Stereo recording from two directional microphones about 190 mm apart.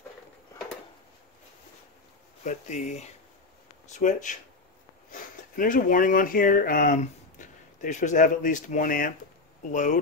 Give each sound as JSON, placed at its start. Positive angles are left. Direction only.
{"t": 2.4, "sound": "speech", "side_deg": 40}